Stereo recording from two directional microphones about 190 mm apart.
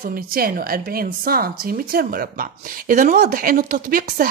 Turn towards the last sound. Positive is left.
turn(degrees=-50)  # may be behind; listen again after turning